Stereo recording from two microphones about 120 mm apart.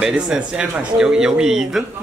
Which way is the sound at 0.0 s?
5° right (ahead or behind).